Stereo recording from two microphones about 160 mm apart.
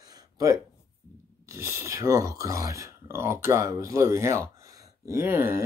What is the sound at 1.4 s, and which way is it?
Speech, 15° right (ahead or behind).